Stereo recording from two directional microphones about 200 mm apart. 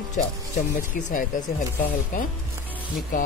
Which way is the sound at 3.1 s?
40° left (ahead or behind).